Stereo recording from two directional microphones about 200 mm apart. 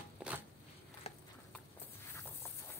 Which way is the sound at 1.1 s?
30° left (ahead or behind).